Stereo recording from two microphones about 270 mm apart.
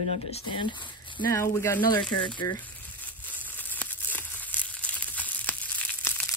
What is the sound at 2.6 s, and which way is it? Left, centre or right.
Crumpling, centre.